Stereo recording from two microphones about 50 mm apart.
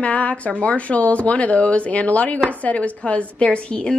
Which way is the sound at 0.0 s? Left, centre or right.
Left.